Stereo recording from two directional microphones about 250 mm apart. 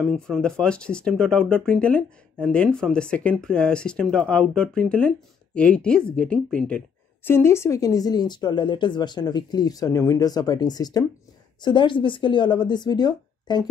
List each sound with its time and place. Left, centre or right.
0.0 s speech: centre